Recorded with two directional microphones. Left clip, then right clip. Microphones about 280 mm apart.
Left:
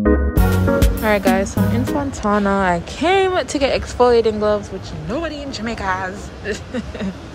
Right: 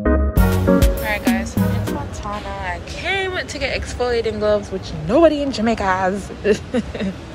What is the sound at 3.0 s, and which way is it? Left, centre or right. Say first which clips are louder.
Speech: left 6 dB; centre.